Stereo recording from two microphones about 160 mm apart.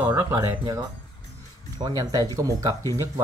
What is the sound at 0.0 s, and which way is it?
Speech, 15° right (ahead or behind).